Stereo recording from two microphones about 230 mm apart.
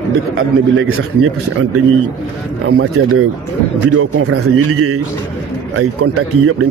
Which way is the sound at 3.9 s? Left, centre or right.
Right.